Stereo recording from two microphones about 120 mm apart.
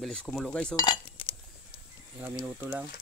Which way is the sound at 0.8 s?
45° left (ahead or behind).